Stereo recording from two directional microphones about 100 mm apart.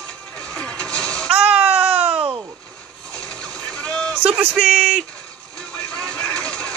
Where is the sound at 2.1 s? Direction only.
65° right (ahead or behind).